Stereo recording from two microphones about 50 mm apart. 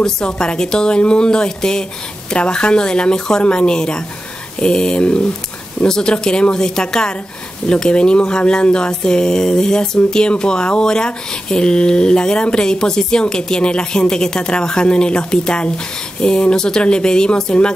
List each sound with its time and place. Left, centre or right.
0.0 s speech: centre